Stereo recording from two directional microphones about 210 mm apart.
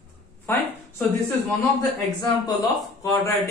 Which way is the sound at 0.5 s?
10° left (ahead or behind).